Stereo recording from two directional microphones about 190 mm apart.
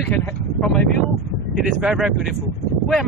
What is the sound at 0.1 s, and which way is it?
Speech, 10° left (ahead or behind).